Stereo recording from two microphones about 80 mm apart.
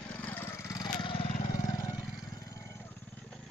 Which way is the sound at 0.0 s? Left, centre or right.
Centre.